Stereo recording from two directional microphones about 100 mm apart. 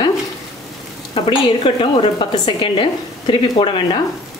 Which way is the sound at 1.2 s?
65° left (ahead or behind).